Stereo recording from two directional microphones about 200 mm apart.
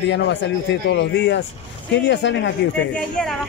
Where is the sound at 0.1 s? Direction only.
60° left (ahead or behind).